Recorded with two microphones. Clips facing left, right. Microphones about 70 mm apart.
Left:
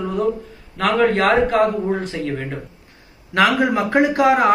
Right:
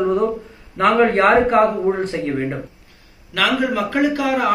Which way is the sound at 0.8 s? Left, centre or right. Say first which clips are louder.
Right 2 dB; right.